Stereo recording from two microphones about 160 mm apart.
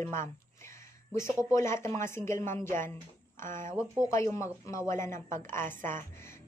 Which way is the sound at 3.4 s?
55° right (ahead or behind).